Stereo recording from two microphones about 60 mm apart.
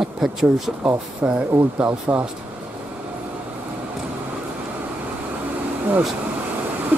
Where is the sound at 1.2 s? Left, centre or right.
Centre.